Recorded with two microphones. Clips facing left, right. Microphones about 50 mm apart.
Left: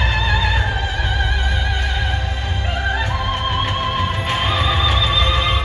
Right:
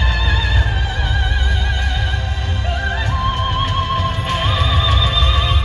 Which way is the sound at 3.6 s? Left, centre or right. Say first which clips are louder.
Right 1 dB; left.